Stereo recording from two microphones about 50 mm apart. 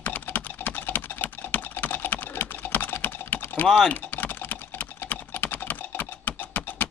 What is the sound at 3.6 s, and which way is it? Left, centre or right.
Speech, centre.